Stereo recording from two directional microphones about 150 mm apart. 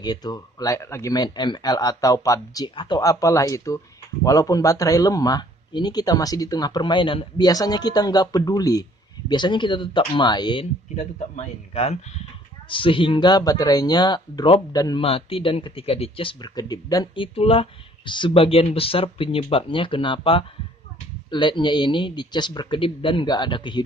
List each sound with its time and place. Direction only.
0.0 s speech: 25° left (ahead or behind)
11.0 s speech: 45° left (ahead or behind); by 15.0 s 25° left (ahead or behind)
15.0 s speech: 40° left (ahead or behind)